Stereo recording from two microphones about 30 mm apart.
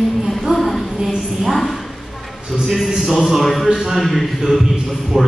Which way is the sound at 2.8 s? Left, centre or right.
Centre.